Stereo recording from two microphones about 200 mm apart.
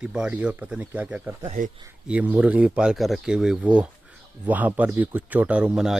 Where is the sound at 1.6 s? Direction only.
45° right (ahead or behind).